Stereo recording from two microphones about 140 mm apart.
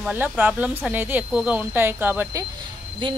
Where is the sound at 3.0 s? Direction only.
35° right (ahead or behind).